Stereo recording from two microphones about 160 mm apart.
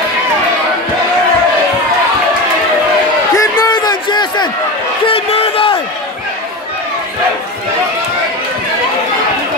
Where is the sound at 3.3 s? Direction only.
25° left (ahead or behind).